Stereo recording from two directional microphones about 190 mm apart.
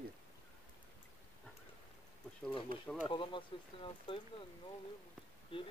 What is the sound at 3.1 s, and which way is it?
Speech, 25° left (ahead or behind).